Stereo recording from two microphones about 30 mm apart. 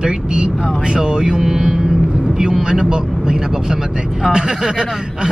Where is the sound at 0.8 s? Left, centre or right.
Right.